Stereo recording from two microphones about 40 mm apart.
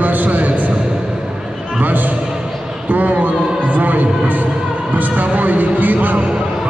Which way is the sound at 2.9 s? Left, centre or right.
Right.